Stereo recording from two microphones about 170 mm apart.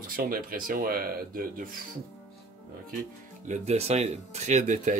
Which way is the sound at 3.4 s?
40° right (ahead or behind).